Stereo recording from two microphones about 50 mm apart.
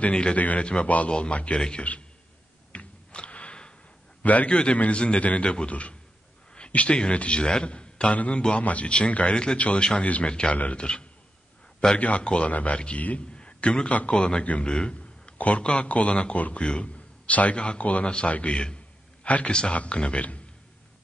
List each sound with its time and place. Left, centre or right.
0.0 s a man's voice: left
2.7 s a sound: left
4.2 s a man's voice: left
12.0 s a man's voice: left